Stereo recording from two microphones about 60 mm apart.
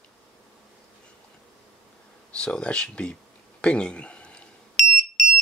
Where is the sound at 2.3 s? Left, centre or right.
Centre.